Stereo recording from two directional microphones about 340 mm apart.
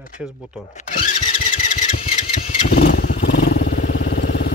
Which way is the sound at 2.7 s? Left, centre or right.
Left.